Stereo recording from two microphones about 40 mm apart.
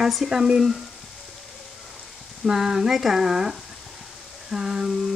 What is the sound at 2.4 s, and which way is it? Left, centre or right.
Speech, centre.